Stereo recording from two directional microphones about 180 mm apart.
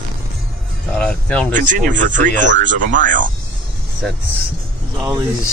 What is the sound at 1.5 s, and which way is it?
Speech, 45° right (ahead or behind).